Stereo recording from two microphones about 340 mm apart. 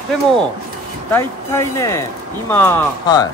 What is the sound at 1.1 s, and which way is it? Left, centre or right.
Speech, centre.